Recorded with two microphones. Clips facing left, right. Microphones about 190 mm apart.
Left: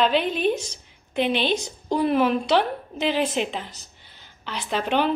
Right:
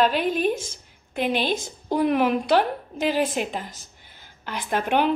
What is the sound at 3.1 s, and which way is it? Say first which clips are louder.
Speech: right 1 dB; 45° right (ahead or behind).